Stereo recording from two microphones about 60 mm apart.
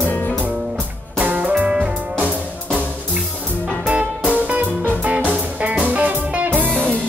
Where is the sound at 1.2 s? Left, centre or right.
Right.